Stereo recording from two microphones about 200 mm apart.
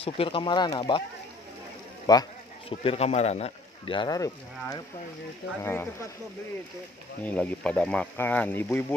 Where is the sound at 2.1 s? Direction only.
25° left (ahead or behind).